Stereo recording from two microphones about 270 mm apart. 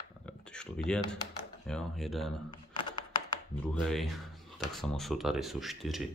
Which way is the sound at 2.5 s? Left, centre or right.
Centre.